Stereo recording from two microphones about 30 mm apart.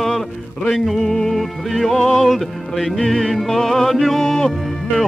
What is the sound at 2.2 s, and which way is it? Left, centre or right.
Music, centre.